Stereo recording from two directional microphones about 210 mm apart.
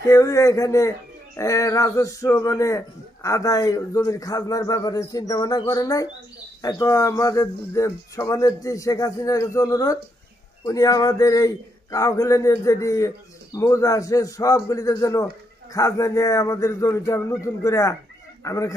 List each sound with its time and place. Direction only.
0.0 s speech: 15° left (ahead or behind)